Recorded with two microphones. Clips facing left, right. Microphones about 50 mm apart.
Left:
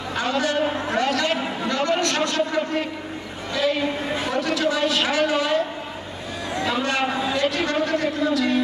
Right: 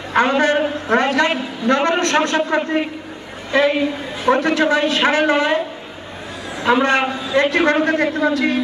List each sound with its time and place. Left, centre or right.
0.1 s a man's voice: right
6.6 s a man's voice: right